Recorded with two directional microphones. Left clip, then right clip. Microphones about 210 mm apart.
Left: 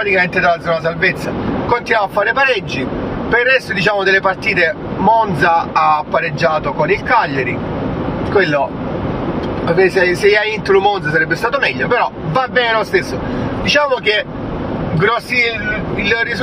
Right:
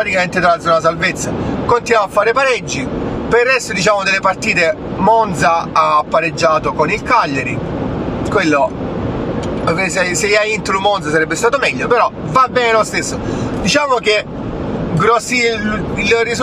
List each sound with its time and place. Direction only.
0.0 s speech: 25° right (ahead or behind)
8.4 s speech: 25° right (ahead or behind)
9.7 s speech: 25° right (ahead or behind)